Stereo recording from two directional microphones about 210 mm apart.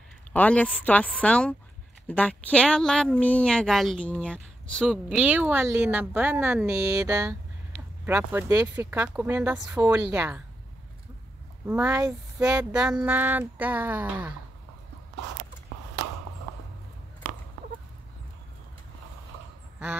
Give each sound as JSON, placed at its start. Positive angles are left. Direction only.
{"t": 0.3, "sound": "a woman's voice", "side_deg": 5}
{"t": 11.6, "sound": "speech", "side_deg": -10}
{"t": 12.4, "sound": "speech", "side_deg": -5}